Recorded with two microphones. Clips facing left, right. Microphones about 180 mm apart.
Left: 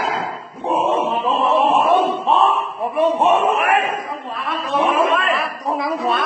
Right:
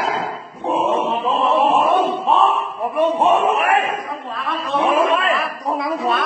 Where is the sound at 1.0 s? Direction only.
Centre (ahead or behind).